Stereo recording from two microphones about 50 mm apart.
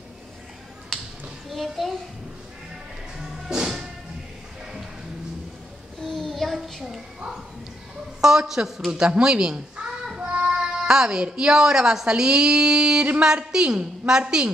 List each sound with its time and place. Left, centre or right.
0.9 s finger snapping: centre
1.5 s a child's voice: centre
3.2 s music: centre
6.0 s child singing: centre
8.2 s a woman's voice: centre